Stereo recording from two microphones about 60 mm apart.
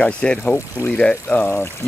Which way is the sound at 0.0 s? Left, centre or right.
Centre.